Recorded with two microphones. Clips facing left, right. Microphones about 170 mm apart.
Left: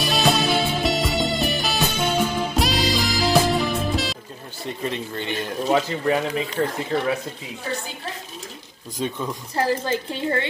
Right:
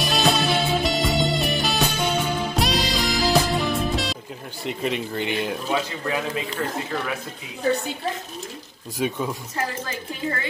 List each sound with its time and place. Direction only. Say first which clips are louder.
0.0 s music: left 1 dB; centre (ahead or behind)
4.6 s speech: right 2 dB; 15° right (ahead or behind)
5.7 s speech: left 10 dB; 25° left (ahead or behind)
9.0 s speech: right 2 dB; 10° right (ahead or behind)
9.6 s a woman's voice: left 9 dB; 30° left (ahead or behind)